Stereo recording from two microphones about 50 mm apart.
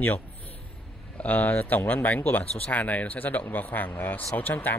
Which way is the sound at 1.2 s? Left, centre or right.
Left.